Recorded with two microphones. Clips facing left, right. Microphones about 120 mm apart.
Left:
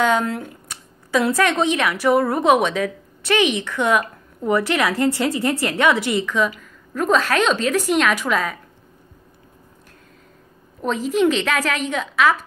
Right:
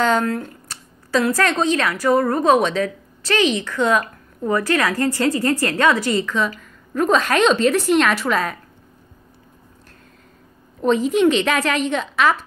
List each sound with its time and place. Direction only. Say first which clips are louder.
0.0 s a woman's voice: right 1 dB; 10° left (ahead or behind)
10.8 s a woman's voice: right 3 dB; centre (ahead or behind)